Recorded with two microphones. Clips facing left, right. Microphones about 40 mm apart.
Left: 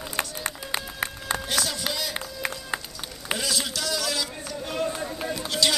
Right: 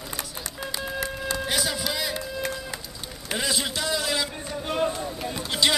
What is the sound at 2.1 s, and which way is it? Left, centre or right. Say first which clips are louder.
Run: right 2 dB; left.